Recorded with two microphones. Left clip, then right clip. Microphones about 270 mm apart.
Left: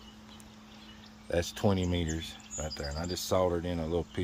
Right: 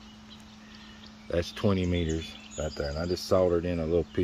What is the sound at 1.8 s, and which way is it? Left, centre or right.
Speech, centre.